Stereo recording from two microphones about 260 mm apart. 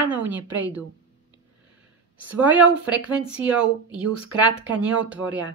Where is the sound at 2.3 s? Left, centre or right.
Centre.